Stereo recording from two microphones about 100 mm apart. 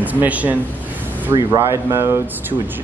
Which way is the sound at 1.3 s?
40° right (ahead or behind).